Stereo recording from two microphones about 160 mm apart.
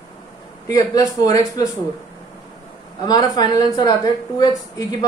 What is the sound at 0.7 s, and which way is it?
Speech, 25° left (ahead or behind).